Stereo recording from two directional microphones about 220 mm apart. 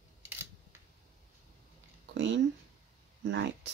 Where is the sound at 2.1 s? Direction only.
55° right (ahead or behind).